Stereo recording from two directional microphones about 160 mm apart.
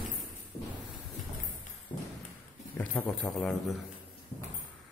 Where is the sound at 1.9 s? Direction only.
30° left (ahead or behind).